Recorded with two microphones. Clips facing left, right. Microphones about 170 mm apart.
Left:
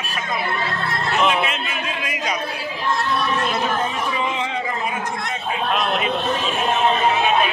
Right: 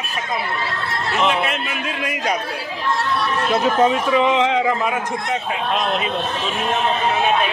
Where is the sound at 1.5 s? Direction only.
55° right (ahead or behind).